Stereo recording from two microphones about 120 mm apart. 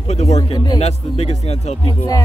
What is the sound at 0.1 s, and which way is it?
Speech, 70° left (ahead or behind).